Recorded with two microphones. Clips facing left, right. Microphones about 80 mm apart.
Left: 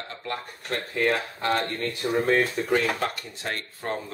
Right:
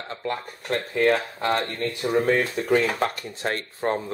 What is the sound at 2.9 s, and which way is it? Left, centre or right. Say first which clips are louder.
Speech: right 3 dB; right.